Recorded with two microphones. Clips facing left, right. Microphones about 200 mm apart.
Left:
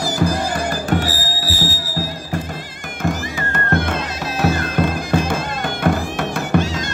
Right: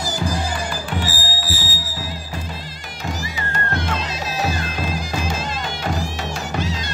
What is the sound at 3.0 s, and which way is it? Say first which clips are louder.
Music: left 6 dB; 55° left (ahead or behind).